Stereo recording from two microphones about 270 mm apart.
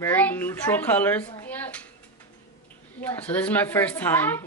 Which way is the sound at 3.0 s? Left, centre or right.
Centre.